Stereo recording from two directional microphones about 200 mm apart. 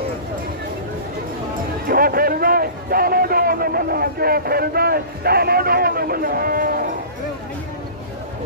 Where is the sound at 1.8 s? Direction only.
45° right (ahead or behind).